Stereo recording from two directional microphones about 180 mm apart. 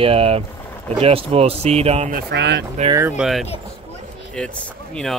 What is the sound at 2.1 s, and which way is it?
Speech, 60° right (ahead or behind).